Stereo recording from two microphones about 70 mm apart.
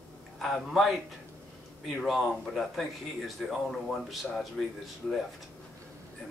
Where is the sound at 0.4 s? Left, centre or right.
Centre.